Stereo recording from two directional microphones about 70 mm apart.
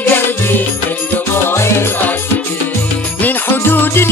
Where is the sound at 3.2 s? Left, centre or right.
Left.